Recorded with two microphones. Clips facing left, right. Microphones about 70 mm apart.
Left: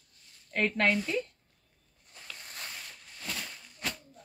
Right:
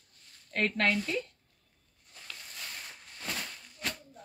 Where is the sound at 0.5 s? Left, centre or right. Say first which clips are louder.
Left 1 dB; centre.